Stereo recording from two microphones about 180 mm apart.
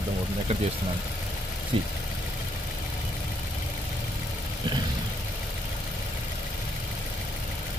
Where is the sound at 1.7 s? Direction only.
30° right (ahead or behind).